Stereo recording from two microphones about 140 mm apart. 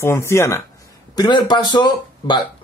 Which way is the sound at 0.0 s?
20° left (ahead or behind).